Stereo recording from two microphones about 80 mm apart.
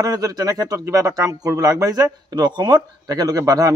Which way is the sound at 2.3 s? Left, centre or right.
Right.